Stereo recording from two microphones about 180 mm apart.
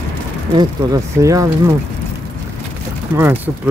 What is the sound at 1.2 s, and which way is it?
Speech, 20° right (ahead or behind).